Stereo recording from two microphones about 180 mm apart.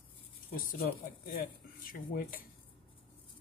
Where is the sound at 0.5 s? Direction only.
55° left (ahead or behind).